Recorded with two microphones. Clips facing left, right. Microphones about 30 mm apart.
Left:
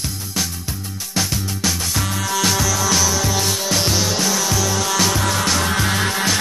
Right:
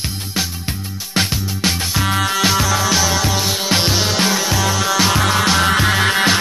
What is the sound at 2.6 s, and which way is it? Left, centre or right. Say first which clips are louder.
Music: right 2 dB; right.